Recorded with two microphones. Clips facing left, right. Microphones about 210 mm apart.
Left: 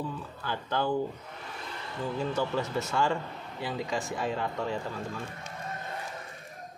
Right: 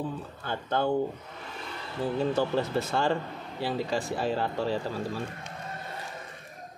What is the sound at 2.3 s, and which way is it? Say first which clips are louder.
Speech: right 3 dB; 30° right (ahead or behind).